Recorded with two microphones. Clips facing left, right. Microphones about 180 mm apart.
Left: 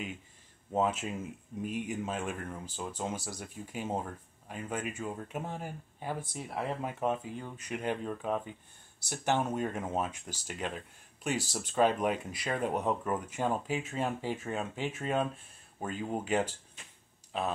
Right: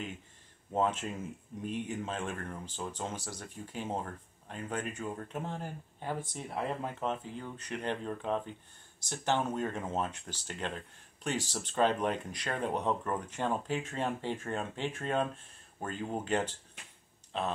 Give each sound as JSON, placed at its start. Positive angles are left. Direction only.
{"t": 0.7, "sound": "speech", "side_deg": 5}